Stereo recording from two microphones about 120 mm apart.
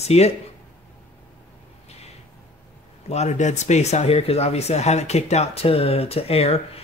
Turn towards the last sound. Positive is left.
turn(degrees=55)  # may be behind; listen again after turning